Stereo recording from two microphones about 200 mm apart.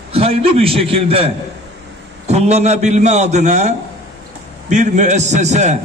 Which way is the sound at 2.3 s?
35° right (ahead or behind).